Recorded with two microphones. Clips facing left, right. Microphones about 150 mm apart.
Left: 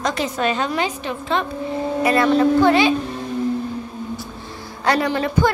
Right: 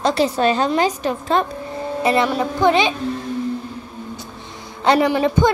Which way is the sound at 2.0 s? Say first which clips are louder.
Left 2 dB; 25° right (ahead or behind).